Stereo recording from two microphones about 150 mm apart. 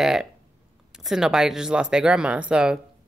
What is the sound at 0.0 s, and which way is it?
Speech, 5° right (ahead or behind).